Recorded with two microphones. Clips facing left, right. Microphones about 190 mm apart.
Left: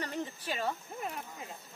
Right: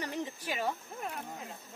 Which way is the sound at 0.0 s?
10° right (ahead or behind).